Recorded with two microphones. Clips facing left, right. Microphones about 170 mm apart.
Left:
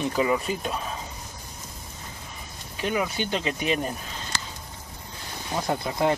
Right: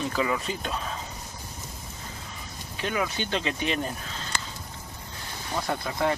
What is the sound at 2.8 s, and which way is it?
Speech, 15° left (ahead or behind).